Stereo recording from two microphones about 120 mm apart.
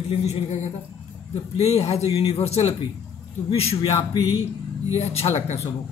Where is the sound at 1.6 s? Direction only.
60° left (ahead or behind).